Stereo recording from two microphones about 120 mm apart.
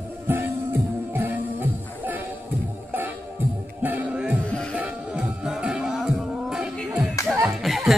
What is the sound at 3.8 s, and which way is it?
Music, 15° right (ahead or behind).